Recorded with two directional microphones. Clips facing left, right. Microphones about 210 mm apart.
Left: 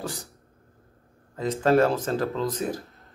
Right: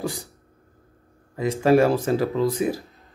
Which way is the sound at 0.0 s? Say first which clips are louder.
Right 5 dB; 10° right (ahead or behind).